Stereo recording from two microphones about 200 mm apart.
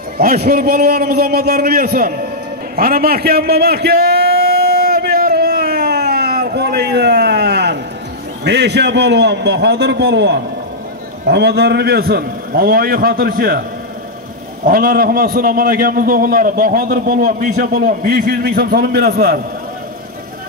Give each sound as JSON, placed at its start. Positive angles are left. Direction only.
{"t": 0.2, "sound": "a man's voice", "side_deg": -45}
{"t": 2.7, "sound": "a sound", "side_deg": -50}
{"t": 8.5, "sound": "a man's voice", "side_deg": -55}
{"t": 14.6, "sound": "a man's voice", "side_deg": -45}